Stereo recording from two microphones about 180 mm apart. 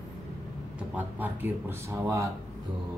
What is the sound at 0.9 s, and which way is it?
Speech, 10° right (ahead or behind).